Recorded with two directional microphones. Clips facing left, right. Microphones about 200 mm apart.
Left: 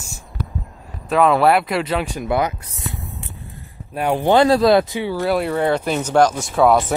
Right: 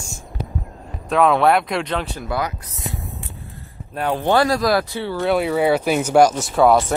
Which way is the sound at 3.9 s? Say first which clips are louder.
Left 3 dB; 15° left (ahead or behind).